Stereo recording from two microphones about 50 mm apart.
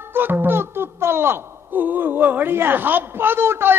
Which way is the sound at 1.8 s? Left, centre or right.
Right.